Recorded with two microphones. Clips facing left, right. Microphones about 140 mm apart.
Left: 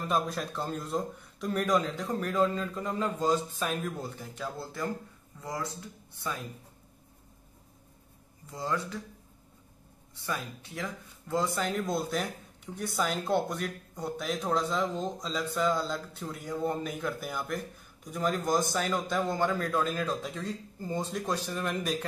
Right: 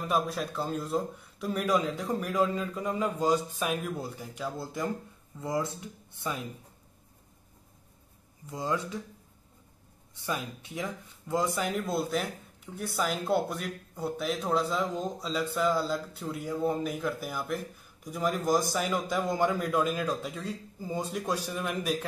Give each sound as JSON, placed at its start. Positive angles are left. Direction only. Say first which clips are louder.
{"t": 0.1, "sound": "a man's voice", "louder": "right 1 dB", "side_deg": -5}
{"t": 8.5, "sound": "speech", "louder": "right 1 dB", "side_deg": -20}
{"t": 10.2, "sound": "a man's voice", "louder": "right 2 dB", "side_deg": -20}